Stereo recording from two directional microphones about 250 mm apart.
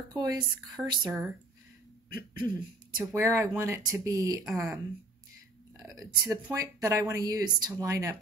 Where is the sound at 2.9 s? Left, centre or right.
Centre.